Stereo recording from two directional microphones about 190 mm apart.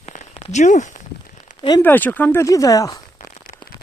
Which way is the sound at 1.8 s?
10° left (ahead or behind).